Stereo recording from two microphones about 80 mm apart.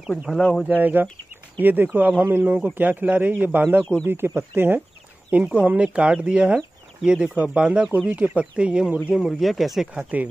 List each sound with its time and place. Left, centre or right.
0.3 s speech: centre
0.7 s a man's voice: right
9.1 s speech: centre
10.1 s a man's voice: centre